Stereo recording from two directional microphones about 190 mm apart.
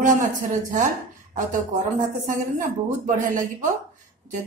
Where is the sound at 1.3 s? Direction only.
45° right (ahead or behind).